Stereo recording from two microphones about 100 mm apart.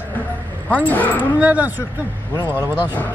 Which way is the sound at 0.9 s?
15° left (ahead or behind).